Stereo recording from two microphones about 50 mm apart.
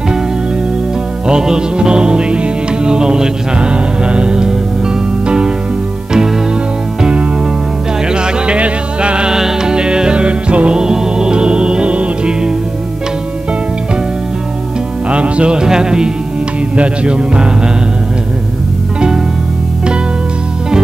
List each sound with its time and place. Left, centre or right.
1.2 s music: centre
7.0 s music: right
10.8 s music: centre
15.0 s music: right
16.7 s speech: right